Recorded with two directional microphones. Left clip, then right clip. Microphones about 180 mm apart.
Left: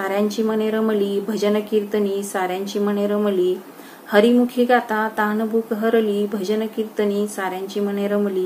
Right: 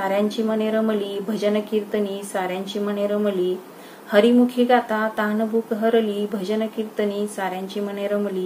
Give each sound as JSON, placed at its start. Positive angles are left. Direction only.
{"t": 0.0, "sound": "speech", "side_deg": 5}